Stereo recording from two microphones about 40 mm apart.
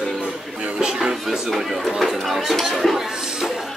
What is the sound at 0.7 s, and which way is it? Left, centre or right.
Music, centre.